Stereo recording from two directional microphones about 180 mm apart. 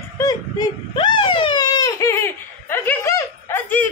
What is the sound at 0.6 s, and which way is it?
Baby cry, 25° left (ahead or behind).